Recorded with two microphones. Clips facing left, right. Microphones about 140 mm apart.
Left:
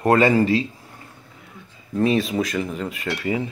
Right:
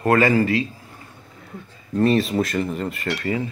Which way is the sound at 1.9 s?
Centre (ahead or behind).